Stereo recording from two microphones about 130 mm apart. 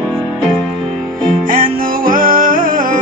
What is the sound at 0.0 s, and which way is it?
Music, 5° left (ahead or behind).